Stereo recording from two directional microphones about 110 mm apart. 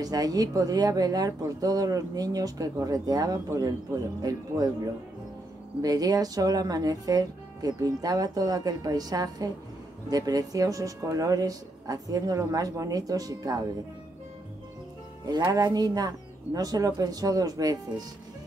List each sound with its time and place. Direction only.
0.0 s speech: 35° right (ahead or behind)
5.8 s speech: 35° right (ahead or behind)
15.2 s speech: 40° right (ahead or behind)